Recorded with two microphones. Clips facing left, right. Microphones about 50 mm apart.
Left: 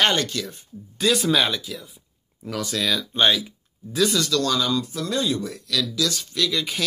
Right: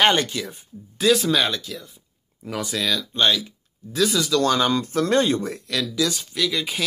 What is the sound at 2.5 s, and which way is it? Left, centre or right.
Speech, centre.